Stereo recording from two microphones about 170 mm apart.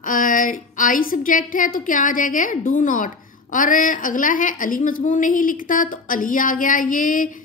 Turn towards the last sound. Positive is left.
turn(degrees=50)  # may be behind; listen again after turning